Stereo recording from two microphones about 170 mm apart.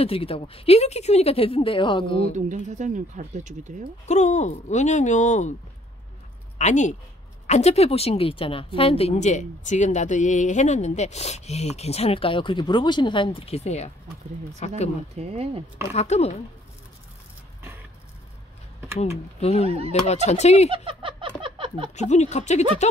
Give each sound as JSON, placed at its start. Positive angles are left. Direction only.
{"t": 0.0, "sound": "a woman's voice", "side_deg": 35}
{"t": 2.3, "sound": "speech", "side_deg": -45}
{"t": 4.1, "sound": "speech", "side_deg": 45}
{"t": 6.6, "sound": "a woman's voice", "side_deg": 45}
{"t": 15.1, "sound": "speech", "side_deg": -35}
{"t": 15.9, "sound": "a woman's voice", "side_deg": 40}
{"t": 18.9, "sound": "a woman's voice", "side_deg": 40}
{"t": 20.7, "sound": "a sound", "side_deg": -30}
{"t": 22.1, "sound": "a woman's voice", "side_deg": 40}